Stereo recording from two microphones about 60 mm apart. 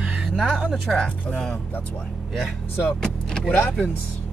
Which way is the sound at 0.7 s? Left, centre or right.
Centre.